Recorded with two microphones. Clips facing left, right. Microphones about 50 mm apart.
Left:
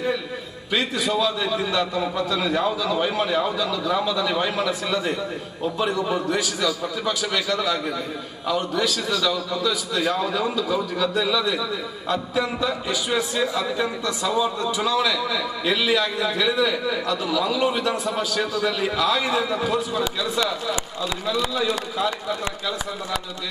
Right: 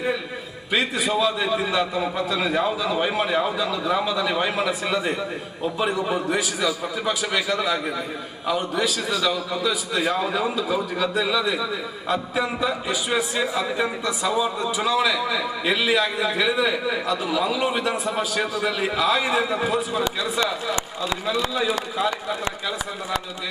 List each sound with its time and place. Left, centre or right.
0.7 s a man's voice: centre